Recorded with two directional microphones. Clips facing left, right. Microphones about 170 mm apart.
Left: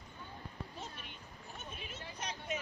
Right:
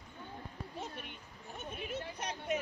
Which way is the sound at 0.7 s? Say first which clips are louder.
Right 4 dB; 55° right (ahead or behind).